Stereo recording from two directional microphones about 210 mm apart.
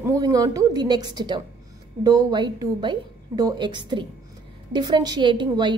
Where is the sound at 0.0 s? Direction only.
15° right (ahead or behind).